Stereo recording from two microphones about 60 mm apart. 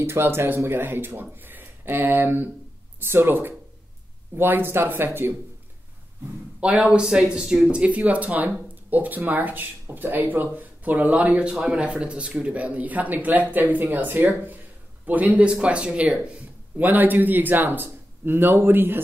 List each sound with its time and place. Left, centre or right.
0.0 s speech: right
6.6 s speech: centre
16.7 s speech: right